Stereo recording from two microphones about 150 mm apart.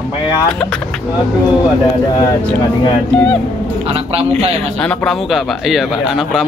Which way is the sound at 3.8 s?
40° right (ahead or behind).